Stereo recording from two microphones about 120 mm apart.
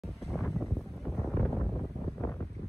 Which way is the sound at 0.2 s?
Centre (ahead or behind).